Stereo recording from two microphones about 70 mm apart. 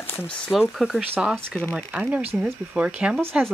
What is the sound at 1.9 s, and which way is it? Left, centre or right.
Speech, right.